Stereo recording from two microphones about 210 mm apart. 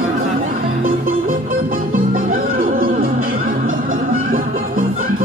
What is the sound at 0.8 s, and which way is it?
Music, 40° right (ahead or behind).